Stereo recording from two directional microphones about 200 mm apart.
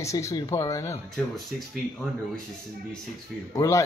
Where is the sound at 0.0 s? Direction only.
15° left (ahead or behind).